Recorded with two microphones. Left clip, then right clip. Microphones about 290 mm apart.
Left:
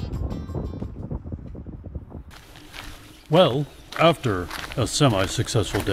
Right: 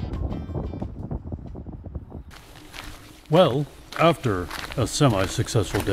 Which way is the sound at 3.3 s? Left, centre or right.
Centre.